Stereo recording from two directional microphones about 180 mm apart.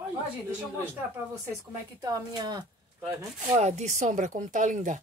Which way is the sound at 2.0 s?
20° right (ahead or behind).